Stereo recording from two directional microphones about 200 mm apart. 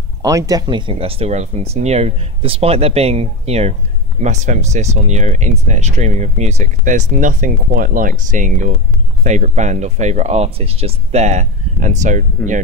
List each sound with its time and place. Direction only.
0.2 s speech: 15° right (ahead or behind); by 12.6 s 40° right (ahead or behind)